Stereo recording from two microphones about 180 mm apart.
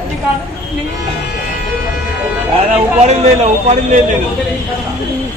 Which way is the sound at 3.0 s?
35° right (ahead or behind).